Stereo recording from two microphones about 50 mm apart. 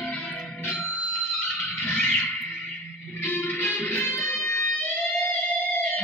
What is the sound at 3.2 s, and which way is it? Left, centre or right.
Music, left.